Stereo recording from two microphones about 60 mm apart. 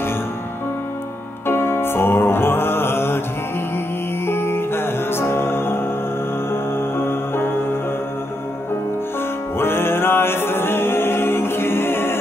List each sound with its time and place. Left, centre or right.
1.5 s music: left
4.3 s music: left
9.6 s music: left